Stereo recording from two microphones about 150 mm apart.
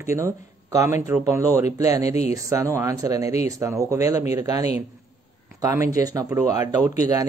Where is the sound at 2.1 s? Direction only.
45° left (ahead or behind).